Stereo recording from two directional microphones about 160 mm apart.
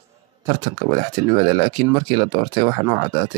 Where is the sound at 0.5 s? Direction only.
25° right (ahead or behind).